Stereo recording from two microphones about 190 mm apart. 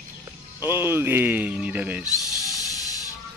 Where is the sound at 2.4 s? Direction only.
20° left (ahead or behind).